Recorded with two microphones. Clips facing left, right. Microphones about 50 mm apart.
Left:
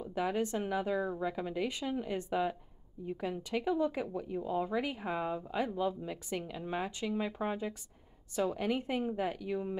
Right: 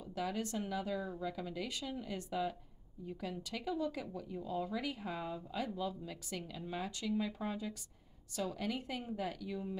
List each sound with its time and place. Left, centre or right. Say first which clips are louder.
0.0 s a woman's voice: left 6 dB; left